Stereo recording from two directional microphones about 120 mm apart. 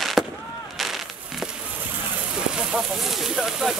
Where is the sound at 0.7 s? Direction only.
Centre (ahead or behind).